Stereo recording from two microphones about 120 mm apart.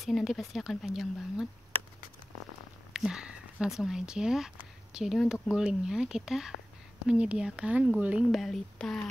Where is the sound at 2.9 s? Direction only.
5° right (ahead or behind).